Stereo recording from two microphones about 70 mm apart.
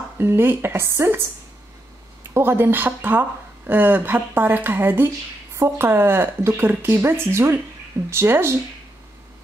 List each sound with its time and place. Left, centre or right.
0.2 s speech: right
2.3 s speech: right